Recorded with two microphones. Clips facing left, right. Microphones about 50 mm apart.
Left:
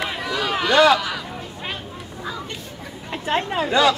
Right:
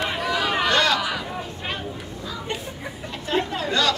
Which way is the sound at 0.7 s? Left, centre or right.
Centre.